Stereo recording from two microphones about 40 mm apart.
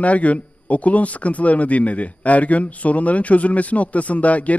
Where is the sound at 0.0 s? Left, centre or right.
Left.